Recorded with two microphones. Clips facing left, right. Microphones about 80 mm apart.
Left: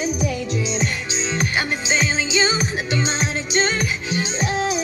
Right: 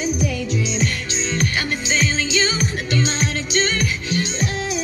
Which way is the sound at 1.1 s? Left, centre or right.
Centre.